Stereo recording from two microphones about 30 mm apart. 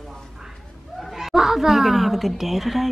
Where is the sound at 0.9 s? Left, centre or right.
Centre.